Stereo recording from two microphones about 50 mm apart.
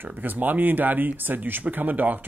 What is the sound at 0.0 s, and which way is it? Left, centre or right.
Speech, right.